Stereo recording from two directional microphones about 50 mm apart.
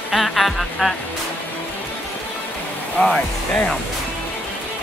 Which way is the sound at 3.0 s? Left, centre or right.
Left.